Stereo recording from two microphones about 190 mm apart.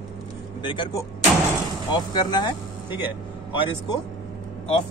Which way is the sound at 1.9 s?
20° left (ahead or behind).